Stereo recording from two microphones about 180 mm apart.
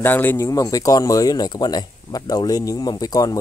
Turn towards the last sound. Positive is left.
turn(degrees=20)  # may be behind; listen again after turning